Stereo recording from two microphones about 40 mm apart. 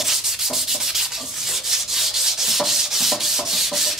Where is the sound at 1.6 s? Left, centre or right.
Centre.